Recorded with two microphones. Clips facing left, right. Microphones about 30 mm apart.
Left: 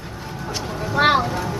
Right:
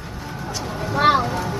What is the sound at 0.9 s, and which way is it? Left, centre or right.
Vehicle, centre.